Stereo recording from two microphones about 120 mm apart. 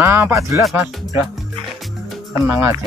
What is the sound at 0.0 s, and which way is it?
Speech, 20° right (ahead or behind).